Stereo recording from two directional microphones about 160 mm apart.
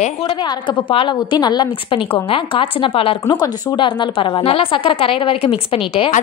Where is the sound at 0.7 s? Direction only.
30° left (ahead or behind).